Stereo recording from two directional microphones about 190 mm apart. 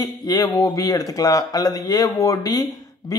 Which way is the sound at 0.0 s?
20° left (ahead or behind).